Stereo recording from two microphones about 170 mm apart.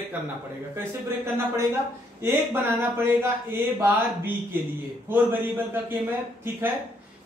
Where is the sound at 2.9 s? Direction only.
15° right (ahead or behind).